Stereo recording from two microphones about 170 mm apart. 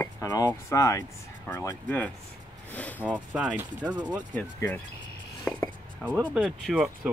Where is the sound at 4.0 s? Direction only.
25° right (ahead or behind).